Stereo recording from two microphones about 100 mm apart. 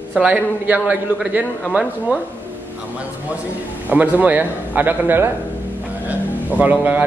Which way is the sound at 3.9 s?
15° right (ahead or behind).